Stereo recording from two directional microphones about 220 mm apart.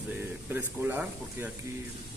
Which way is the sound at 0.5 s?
10° right (ahead or behind).